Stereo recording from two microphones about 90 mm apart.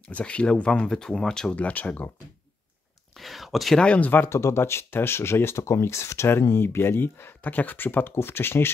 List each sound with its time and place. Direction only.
0.1 s speech: 15° left (ahead or behind)
3.2 s a sound: centre (ahead or behind)
3.8 s speech: 15° left (ahead or behind)